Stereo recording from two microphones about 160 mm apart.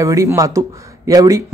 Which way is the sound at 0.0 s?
20° right (ahead or behind).